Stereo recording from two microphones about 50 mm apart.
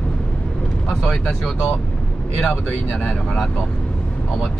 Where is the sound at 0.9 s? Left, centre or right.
Centre.